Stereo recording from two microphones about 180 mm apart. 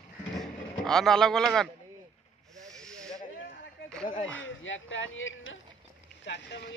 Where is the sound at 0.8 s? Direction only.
5° left (ahead or behind).